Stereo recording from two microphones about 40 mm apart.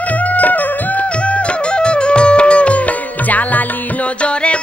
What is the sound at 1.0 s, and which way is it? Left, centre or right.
Music, left.